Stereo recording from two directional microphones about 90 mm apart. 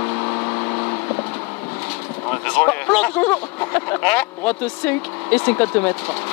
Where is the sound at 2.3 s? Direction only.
20° left (ahead or behind).